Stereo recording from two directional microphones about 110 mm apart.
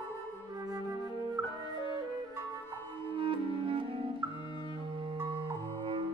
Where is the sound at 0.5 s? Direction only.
35° right (ahead or behind).